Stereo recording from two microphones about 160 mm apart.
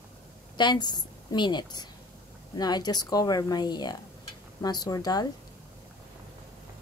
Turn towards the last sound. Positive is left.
turn(degrees=25)  # may be behind; listen again after turning